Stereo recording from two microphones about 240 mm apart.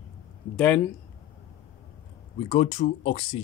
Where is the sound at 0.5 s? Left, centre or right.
Centre.